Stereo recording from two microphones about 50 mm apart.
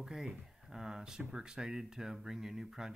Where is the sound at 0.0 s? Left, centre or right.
Centre.